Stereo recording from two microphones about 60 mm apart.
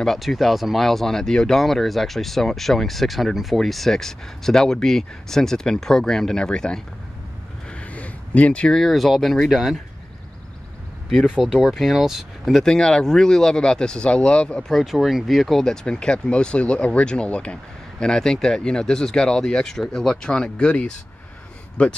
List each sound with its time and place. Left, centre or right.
0.0 s speech: centre
7.7 s a sound: left
8.7 s speech: centre
11.1 s speech: centre
12.6 s speech: centre
14.7 s speech: centre